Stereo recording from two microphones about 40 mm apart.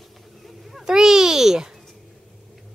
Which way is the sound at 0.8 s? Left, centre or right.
Centre.